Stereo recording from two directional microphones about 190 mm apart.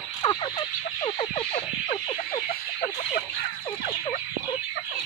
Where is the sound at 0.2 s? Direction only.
25° left (ahead or behind).